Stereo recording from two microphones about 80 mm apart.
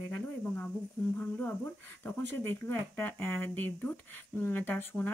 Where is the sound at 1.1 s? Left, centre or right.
Left.